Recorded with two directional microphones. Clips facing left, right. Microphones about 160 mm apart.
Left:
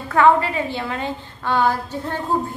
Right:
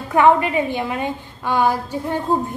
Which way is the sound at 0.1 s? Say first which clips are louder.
Right 1 dB; 15° right (ahead or behind).